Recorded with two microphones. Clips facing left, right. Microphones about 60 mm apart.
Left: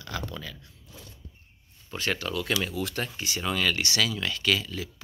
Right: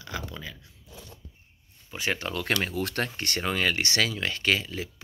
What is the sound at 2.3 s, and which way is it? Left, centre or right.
Speech, right.